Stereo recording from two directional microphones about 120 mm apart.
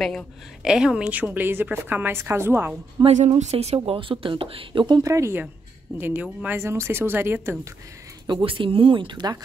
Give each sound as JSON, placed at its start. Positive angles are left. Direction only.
{"t": 0.6, "sound": "a woman's voice", "side_deg": -5}
{"t": 3.1, "sound": "speech", "side_deg": -70}
{"t": 5.0, "sound": "a woman's voice", "side_deg": -25}
{"t": 8.3, "sound": "speech", "side_deg": -45}